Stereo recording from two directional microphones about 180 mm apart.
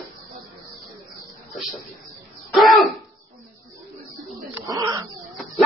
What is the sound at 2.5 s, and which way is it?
Throat clearing, centre (ahead or behind).